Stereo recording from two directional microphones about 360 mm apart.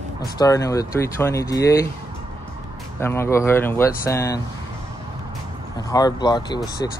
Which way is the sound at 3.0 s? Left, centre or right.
Centre.